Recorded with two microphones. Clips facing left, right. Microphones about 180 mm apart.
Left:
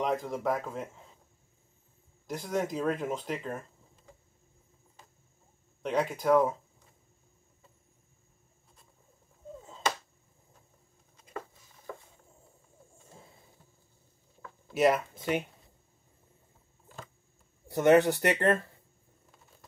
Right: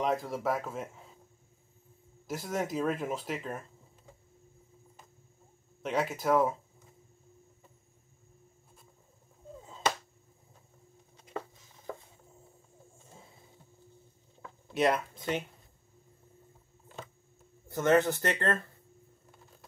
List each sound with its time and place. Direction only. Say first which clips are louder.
0.0 s speech: even; centre (ahead or behind)
2.2 s speech: left 2 dB; 5° right (ahead or behind)
5.8 s speech: left 2 dB; centre (ahead or behind)
14.7 s speech: left 3 dB; 5° left (ahead or behind)
17.6 s speech: left 4 dB; 15° left (ahead or behind)